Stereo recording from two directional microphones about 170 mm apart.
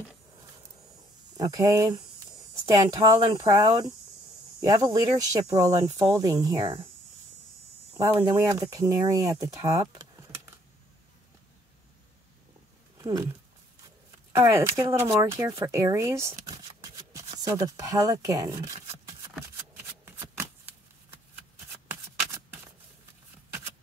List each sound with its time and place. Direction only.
1.3 s speech: 20° right (ahead or behind)
4.9 s speech: 20° right (ahead or behind)
7.9 s speech: 15° right (ahead or behind)
9.9 s typing: 20° right (ahead or behind)
12.9 s speech: 20° right (ahead or behind)
14.3 s speech: 15° right (ahead or behind)
19.7 s shuffling cards: 10° right (ahead or behind)
21.8 s shuffling cards: 15° right (ahead or behind)